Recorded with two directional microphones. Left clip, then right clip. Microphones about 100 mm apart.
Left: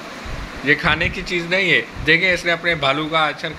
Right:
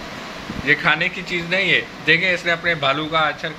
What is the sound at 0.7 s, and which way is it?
Speech, 40° left (ahead or behind).